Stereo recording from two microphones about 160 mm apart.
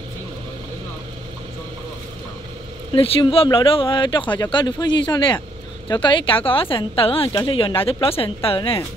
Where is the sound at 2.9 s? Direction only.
35° left (ahead or behind).